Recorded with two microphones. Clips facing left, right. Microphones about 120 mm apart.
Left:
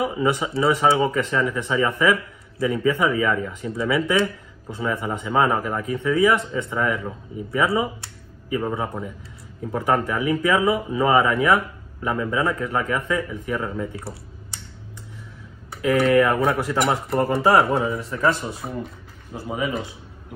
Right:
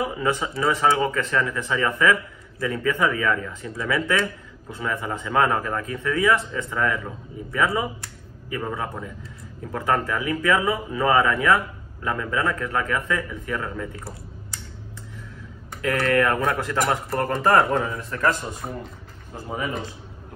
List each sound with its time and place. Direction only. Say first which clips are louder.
0.0 s speech: left 2 dB; 15° left (ahead or behind)
15.7 s speech: left 4 dB; 15° left (ahead or behind)